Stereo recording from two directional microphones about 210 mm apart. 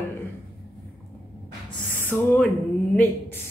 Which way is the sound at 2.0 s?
10° left (ahead or behind).